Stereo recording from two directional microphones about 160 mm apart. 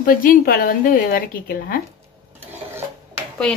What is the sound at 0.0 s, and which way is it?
A woman's voice, 60° left (ahead or behind).